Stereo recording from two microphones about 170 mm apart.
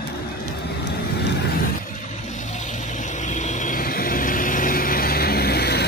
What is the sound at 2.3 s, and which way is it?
Vehicle, 45° left (ahead or behind).